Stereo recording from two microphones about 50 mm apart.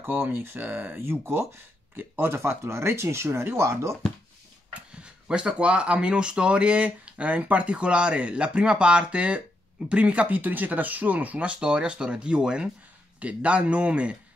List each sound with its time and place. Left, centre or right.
0.0 s speech: right
2.0 s speech: right
5.0 s speech: right